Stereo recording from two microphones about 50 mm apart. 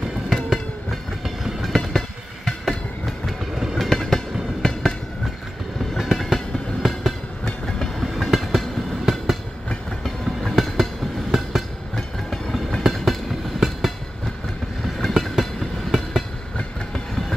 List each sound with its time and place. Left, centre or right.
1.2 s train: centre
3.3 s train: centre
3.8 s train: centre
5.9 s train: centre
15.0 s train: centre